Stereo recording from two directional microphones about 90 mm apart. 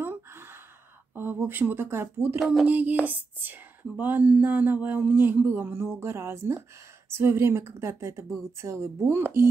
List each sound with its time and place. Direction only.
0.0 s gasp: 25° right (ahead or behind)
1.1 s a woman's voice: 25° right (ahead or behind)